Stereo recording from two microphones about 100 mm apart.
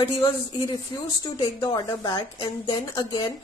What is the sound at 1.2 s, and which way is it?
A woman's voice, 40° left (ahead or behind).